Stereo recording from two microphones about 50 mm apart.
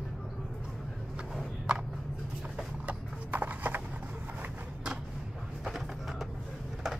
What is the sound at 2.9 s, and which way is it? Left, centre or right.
Clip-clop, right.